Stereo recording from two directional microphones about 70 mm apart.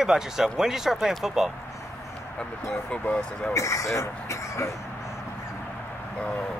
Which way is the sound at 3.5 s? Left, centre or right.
Left.